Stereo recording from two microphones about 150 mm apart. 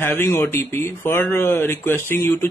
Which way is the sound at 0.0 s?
15° left (ahead or behind).